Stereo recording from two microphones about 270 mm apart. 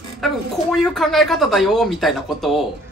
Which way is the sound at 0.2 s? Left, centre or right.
Centre.